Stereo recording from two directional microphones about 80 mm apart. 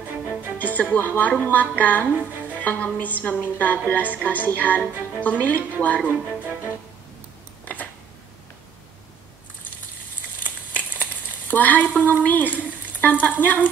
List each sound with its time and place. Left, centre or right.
0.6 s speech: left
6.0 s speech: centre
7.6 s a sound: centre
11.5 s speech: left
12.0 s stir: left